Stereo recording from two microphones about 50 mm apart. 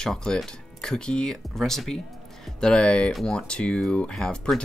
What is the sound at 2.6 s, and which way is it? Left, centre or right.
Speech, centre.